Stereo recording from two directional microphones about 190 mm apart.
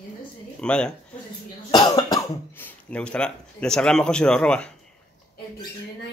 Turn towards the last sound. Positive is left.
turn(degrees=5)  # may be behind; listen again after turning